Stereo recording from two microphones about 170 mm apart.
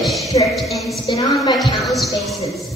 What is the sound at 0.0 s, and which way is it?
Music, centre (ahead or behind).